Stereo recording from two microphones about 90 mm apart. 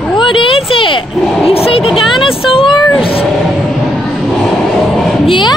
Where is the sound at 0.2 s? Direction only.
70° left (ahead or behind).